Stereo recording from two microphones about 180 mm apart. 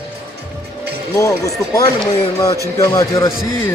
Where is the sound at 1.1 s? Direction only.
20° left (ahead or behind).